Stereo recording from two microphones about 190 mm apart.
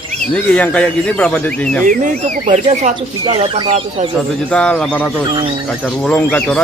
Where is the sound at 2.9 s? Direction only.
25° right (ahead or behind).